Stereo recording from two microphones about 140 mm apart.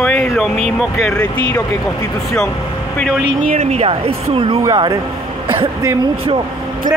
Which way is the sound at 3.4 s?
60° right (ahead or behind).